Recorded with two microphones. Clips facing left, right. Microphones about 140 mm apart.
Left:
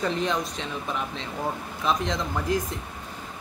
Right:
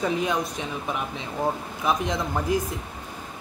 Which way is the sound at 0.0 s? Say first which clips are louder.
Right 1 dB; 10° right (ahead or behind).